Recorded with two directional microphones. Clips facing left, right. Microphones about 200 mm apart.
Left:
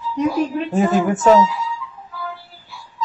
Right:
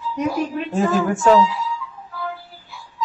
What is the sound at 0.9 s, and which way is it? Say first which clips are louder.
Speech: left 2 dB; 20° left (ahead or behind).